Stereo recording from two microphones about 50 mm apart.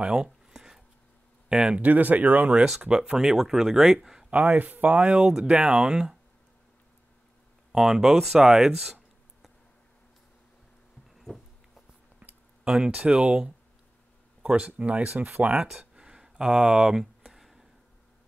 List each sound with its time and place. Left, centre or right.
0.0 s a sound: centre
1.5 s speech: centre
1.8 s speech: right
2.8 s speech: centre
4.3 s speech: right
5.0 s speech: centre
7.7 s speech: centre
12.6 s speech: centre
14.8 s speech: right
15.4 s speech: centre
15.9 s a sound: centre